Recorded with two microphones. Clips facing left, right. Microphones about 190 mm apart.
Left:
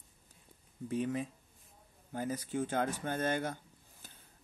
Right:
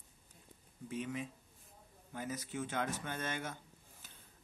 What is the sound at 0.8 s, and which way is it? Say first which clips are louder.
Speech: left 6 dB; 40° left (ahead or behind).